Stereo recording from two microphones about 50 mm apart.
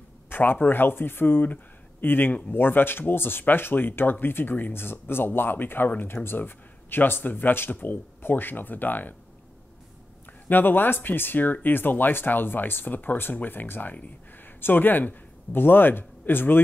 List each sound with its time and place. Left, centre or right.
0.3 s speech: left
10.5 s speech: left